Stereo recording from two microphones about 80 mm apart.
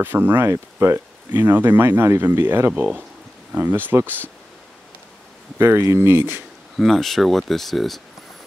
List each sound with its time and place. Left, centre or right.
0.0 s speech: right
2.7 s speech: centre
5.6 s speech: right
6.8 s speech: centre